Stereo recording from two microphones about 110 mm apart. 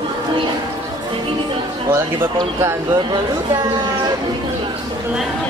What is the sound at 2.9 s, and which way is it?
Speech, 45° right (ahead or behind).